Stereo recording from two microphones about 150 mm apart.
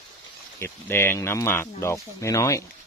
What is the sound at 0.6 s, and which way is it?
Speech, 15° left (ahead or behind).